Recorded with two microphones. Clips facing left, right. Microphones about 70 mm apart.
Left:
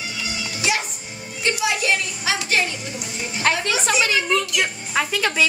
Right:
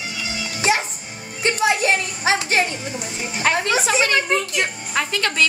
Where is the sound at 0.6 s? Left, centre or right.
Right.